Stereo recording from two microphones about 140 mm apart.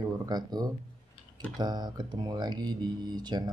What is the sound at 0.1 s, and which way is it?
Speech, 30° right (ahead or behind).